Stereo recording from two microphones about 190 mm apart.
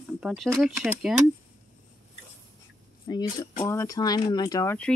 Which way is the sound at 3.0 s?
20° left (ahead or behind).